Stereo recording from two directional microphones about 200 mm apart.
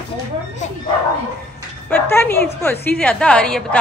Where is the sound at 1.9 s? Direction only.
10° left (ahead or behind).